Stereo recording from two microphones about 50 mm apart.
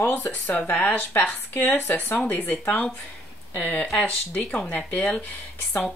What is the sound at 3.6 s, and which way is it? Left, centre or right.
Speech, left.